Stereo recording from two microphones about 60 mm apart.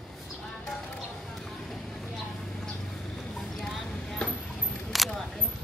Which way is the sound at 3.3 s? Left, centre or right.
Centre.